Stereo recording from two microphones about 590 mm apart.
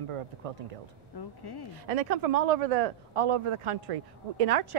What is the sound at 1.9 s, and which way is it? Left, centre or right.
Speech, right.